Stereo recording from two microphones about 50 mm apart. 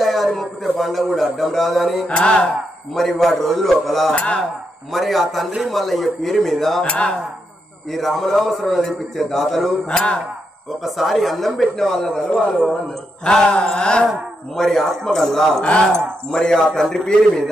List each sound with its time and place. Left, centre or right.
0.0 s speech: centre
2.0 s mantra: left
2.9 s a man's voice: centre
4.1 s mantra: left
4.9 s a man's voice: centre
6.8 s mantra: left
7.9 s a man's voice: centre
9.8 s mantra: left
10.8 s a man's voice: centre
13.2 s mantra: centre
14.5 s a man's voice: centre